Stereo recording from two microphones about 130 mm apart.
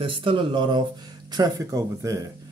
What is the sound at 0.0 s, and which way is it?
Speech, 40° right (ahead or behind).